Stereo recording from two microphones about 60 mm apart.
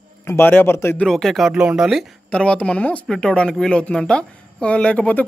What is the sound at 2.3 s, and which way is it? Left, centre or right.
Speech, centre.